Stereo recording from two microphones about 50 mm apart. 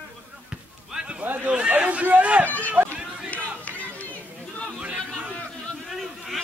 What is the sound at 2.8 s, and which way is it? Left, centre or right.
Run, right.